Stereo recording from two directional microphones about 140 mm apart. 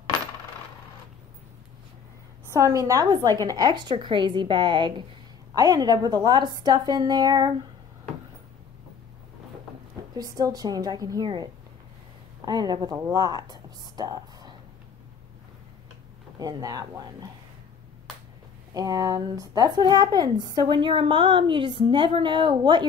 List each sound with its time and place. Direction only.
2.5 s a woman's voice: 20° right (ahead or behind)
10.1 s a woman's voice: 25° right (ahead or behind)
12.4 s speech: 30° right (ahead or behind)
16.3 s a woman's voice: 25° right (ahead or behind)
18.7 s speech: 25° right (ahead or behind)